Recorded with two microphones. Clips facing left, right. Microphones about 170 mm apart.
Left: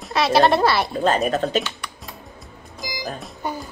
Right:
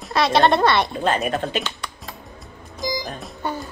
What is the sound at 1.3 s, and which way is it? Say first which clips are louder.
Speech: left 3 dB; 45° left (ahead or behind).